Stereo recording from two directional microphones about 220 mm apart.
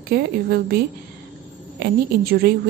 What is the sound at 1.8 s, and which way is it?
Speech, 45° right (ahead or behind).